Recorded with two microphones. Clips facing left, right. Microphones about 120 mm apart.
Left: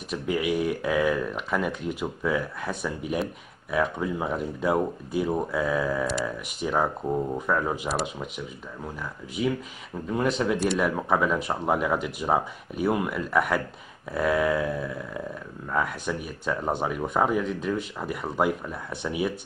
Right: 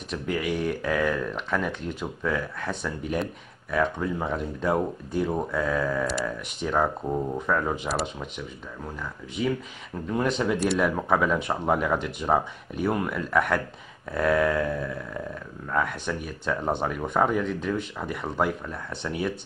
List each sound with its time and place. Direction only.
0.1 s speech: 5° left (ahead or behind)
9.9 s speech: centre (ahead or behind)